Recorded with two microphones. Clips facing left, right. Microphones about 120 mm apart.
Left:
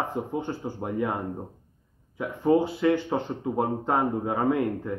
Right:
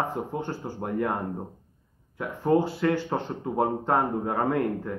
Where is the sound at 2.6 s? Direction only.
15° left (ahead or behind).